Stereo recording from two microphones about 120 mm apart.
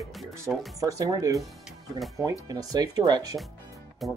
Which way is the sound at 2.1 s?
30° right (ahead or behind).